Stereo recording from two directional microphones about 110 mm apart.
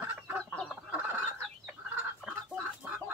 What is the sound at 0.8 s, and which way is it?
Fowl, 10° right (ahead or behind).